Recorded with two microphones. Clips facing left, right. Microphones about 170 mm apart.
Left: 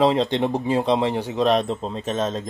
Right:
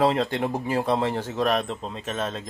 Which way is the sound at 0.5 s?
20° left (ahead or behind).